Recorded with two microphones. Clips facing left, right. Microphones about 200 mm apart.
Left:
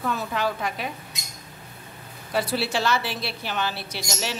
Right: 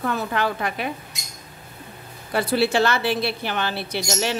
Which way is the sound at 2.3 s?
55° right (ahead or behind).